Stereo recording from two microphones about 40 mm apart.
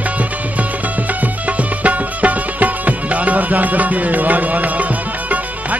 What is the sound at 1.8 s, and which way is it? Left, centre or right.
Music, right.